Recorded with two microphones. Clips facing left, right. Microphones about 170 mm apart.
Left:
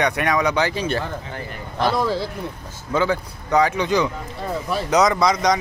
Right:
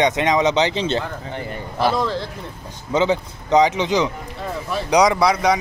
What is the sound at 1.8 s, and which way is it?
Speech, 5° left (ahead or behind).